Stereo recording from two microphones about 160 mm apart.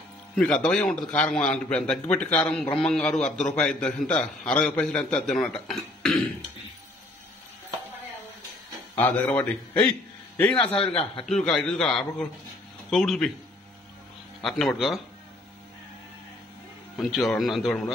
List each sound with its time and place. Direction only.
0.4 s a man's voice: 5° left (ahead or behind)
8.9 s a man's voice: 10° left (ahead or behind)
11.0 s a man's voice: 35° left (ahead or behind)
11.3 s a man's voice: 5° left (ahead or behind)
14.4 s a man's voice: centre (ahead or behind)
16.9 s a man's voice: centre (ahead or behind)